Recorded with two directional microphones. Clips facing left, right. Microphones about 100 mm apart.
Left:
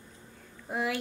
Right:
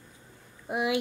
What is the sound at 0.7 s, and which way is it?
Speech, 15° right (ahead or behind).